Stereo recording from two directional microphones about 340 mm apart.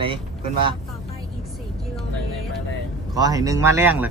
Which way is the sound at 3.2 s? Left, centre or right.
Centre.